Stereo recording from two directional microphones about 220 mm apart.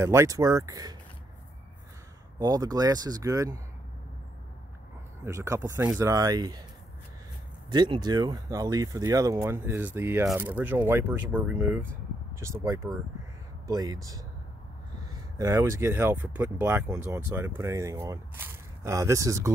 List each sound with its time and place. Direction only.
0.0 s speech: 10° right (ahead or behind)
2.3 s speech: 15° right (ahead or behind)
5.2 s speech: 15° right (ahead or behind)
7.7 s speech: 20° right (ahead or behind)
15.3 s speech: 15° right (ahead or behind)